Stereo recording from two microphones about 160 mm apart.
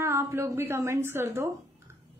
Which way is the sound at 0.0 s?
15° right (ahead or behind).